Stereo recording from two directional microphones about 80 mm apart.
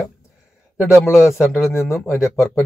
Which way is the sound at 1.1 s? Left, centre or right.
Centre.